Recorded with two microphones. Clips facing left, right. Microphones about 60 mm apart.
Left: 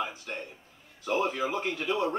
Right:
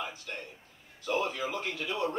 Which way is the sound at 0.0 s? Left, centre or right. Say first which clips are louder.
Left 4 dB; left.